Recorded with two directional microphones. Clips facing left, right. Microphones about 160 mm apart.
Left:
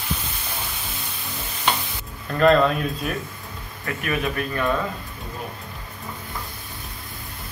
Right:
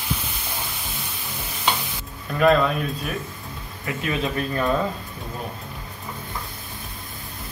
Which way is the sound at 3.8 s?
20° right (ahead or behind).